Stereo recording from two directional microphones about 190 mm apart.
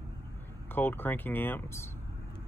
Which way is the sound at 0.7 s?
10° left (ahead or behind).